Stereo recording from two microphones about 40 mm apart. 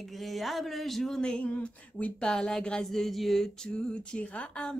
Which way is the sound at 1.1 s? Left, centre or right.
Left.